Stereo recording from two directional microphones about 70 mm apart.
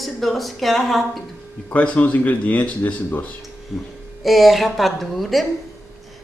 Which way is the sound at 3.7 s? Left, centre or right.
Centre.